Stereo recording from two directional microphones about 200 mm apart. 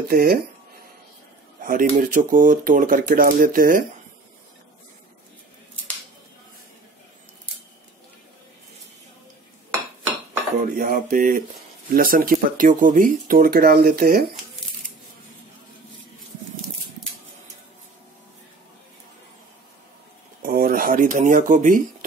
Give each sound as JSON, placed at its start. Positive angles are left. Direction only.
{"t": 0.1, "sound": "speech", "side_deg": -50}
{"t": 1.6, "sound": "speech", "side_deg": -45}
{"t": 10.6, "sound": "speech", "side_deg": -45}
{"t": 14.6, "sound": "scissors", "side_deg": 0}
{"t": 20.4, "sound": "a sound", "side_deg": -45}